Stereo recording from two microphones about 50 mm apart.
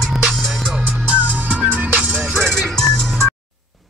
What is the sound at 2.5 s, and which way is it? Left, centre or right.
Music, centre.